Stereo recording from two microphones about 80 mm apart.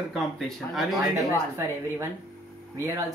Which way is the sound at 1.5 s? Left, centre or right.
Right.